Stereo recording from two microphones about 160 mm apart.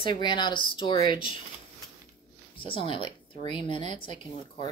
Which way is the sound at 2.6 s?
35° left (ahead or behind).